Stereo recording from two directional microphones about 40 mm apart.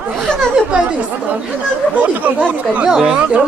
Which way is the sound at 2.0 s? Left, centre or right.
Right.